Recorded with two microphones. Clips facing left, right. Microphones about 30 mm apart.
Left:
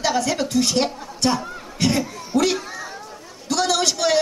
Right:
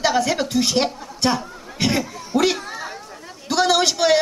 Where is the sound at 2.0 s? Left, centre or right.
Centre.